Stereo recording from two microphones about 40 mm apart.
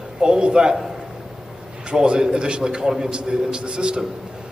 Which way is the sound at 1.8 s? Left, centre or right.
Right.